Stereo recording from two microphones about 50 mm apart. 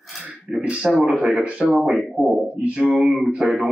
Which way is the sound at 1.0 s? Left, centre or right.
Right.